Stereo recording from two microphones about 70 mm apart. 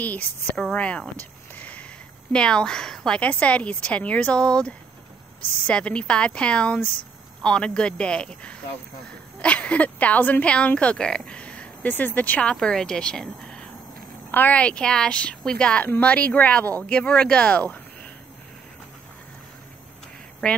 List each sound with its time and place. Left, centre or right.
0.0 s a woman's voice: left
1.5 s a sound: left
2.3 s a woman's voice: centre
3.2 s a woman's voice: centre
20.4 s a woman's voice: centre